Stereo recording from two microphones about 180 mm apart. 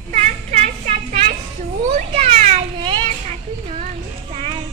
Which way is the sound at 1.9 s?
35° right (ahead or behind).